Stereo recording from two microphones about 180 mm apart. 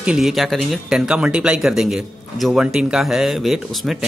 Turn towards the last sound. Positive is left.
turn(degrees=0)  # may be behind; listen again after turning